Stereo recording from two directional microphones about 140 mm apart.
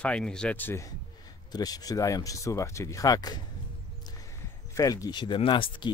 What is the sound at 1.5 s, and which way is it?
Speech, 25° left (ahead or behind).